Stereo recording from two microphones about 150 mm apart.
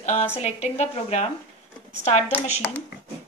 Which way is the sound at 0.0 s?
45° left (ahead or behind).